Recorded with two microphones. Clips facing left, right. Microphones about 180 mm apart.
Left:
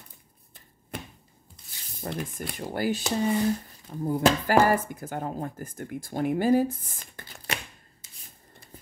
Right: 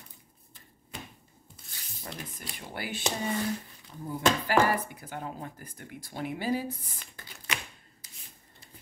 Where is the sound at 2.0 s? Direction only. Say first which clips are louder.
Left 9 dB; 55° left (ahead or behind).